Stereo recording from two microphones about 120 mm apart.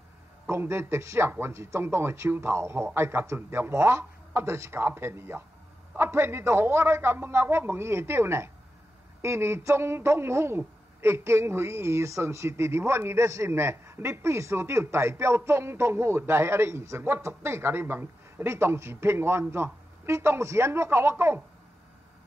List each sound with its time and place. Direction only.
0.5 s a man's voice: 20° right (ahead or behind)